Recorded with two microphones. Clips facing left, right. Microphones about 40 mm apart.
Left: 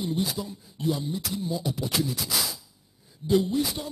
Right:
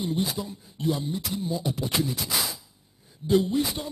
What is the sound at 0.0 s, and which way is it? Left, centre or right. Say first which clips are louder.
Speech: right 1 dB; centre.